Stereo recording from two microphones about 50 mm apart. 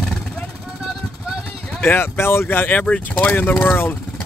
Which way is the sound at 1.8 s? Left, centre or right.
Left.